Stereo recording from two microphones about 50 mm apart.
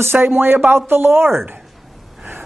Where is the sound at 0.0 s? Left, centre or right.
Right.